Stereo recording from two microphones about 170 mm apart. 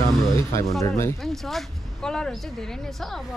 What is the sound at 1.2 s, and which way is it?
Speech, centre (ahead or behind).